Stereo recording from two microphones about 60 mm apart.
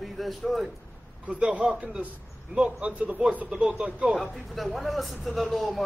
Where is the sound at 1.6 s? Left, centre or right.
Centre.